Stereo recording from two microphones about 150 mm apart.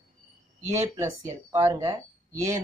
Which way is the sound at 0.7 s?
20° right (ahead or behind).